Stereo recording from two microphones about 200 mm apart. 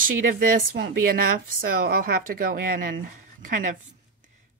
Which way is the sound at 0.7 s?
55° right (ahead or behind).